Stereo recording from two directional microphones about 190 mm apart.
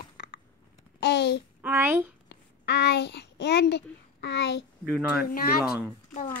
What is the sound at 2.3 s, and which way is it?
A child's voice, 60° left (ahead or behind).